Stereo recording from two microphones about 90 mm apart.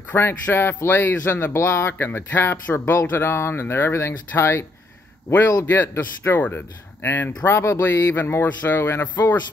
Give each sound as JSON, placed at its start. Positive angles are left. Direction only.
{"t": 0.1, "sound": "a man's voice", "side_deg": 20}
{"t": 5.7, "sound": "a man's voice", "side_deg": 25}